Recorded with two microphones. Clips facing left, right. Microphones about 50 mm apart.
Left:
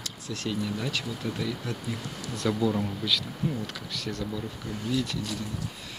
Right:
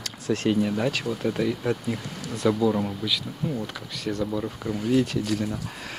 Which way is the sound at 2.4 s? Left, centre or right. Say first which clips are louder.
Right 4 dB; centre.